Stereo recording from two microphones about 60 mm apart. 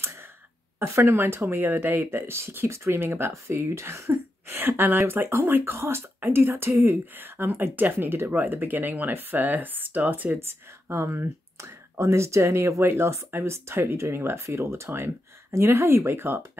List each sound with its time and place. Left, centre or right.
0.7 s speech: right
10.9 s speech: right